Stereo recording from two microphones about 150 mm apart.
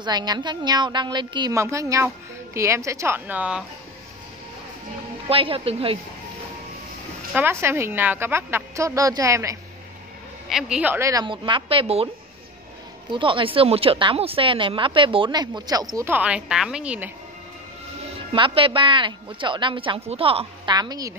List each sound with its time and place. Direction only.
0.0 s a woman's voice: 30° right (ahead or behind); by 3.6 s 10° right (ahead or behind)
5.3 s speech: 40° right (ahead or behind)
7.3 s a woman's voice: 15° right (ahead or behind)
10.5 s a woman's voice: 5° right (ahead or behind)
11.2 s speech: 35° right (ahead or behind)
13.1 s speech: 35° right (ahead or behind)
16.1 s a woman's voice: 10° right (ahead or behind)
18.3 s speech: 35° right (ahead or behind)